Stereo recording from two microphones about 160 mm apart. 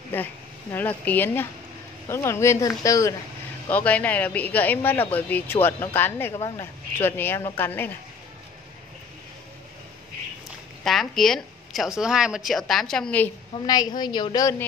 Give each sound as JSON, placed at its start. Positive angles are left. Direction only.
{"t": 0.1, "sound": "a woman's voice", "side_deg": 15}
{"t": 3.6, "sound": "a woman's voice", "side_deg": 10}
{"t": 10.8, "sound": "speech", "side_deg": 0}
{"t": 13.7, "sound": "a woman's voice", "side_deg": 25}